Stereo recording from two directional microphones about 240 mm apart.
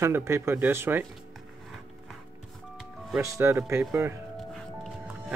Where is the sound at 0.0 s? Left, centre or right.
Centre.